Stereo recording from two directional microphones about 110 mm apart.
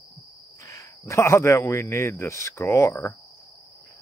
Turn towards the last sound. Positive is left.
turn(degrees=25)  # may be behind; listen again after turning